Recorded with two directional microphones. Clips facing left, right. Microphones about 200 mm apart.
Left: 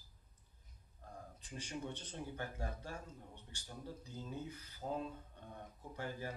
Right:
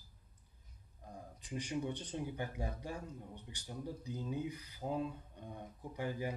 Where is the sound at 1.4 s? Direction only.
15° right (ahead or behind).